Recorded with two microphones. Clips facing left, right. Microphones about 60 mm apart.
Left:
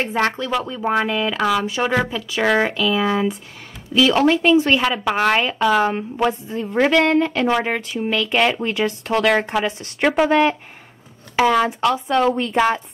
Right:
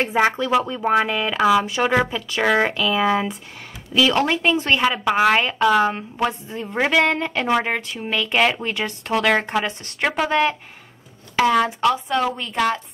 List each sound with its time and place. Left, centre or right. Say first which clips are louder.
0.0 s speech: right 2 dB; centre
12.5 s a woman's voice: left 1 dB; centre